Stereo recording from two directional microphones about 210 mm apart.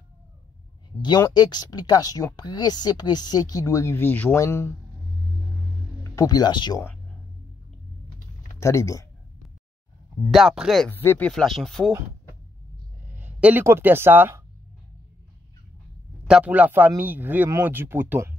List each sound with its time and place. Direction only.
1.0 s speech: 20° left (ahead or behind)
6.1 s speech: 20° left (ahead or behind)
8.5 s speech: 15° left (ahead or behind)
10.3 s speech: centre (ahead or behind)
13.0 s speech: 10° right (ahead or behind)
16.3 s speech: 5° right (ahead or behind)